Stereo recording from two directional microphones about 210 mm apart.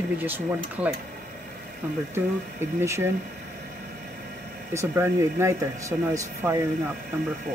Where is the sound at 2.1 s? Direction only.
10° right (ahead or behind).